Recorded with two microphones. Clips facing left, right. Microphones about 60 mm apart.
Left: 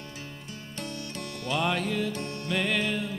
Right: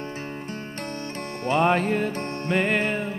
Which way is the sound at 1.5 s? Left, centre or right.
Right.